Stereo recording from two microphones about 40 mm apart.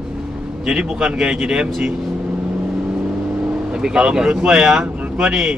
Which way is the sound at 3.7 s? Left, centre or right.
Centre.